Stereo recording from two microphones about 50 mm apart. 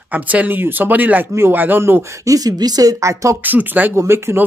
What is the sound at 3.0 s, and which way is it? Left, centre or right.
Speech, right.